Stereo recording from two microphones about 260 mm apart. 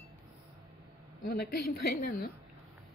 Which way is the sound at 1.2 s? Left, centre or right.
Left.